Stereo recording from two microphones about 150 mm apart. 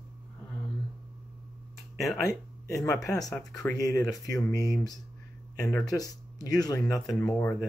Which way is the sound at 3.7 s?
25° left (ahead or behind).